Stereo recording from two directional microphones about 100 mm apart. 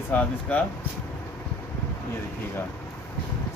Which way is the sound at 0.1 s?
15° left (ahead or behind).